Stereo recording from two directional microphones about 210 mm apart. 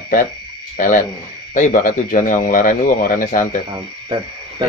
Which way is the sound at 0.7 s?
40° left (ahead or behind).